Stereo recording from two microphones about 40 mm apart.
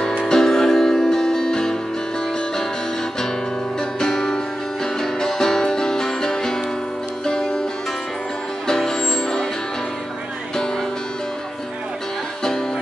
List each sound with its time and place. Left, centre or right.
0.0 s music: centre
4.0 s music: centre
8.6 s music: centre